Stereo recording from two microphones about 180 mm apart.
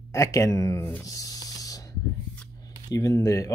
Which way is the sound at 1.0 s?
20° left (ahead or behind).